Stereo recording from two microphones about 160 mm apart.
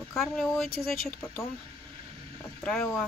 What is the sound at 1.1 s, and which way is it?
Speech, 15° left (ahead or behind).